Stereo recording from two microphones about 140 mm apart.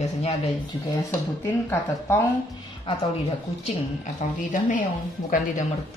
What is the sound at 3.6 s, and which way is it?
A woman's voice, 60° left (ahead or behind).